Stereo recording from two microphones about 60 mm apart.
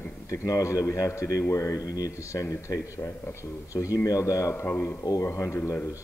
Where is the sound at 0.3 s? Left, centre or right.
Left.